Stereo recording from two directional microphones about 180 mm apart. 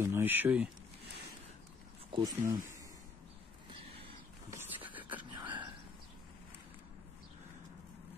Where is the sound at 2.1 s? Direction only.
25° right (ahead or behind).